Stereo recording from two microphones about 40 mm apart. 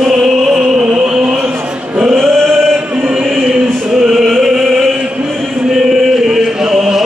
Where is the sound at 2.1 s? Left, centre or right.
Centre.